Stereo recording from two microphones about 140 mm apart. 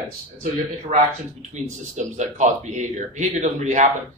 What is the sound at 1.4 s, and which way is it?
Speech, 60° right (ahead or behind).